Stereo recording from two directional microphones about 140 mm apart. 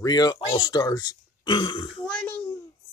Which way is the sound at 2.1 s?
10° left (ahead or behind).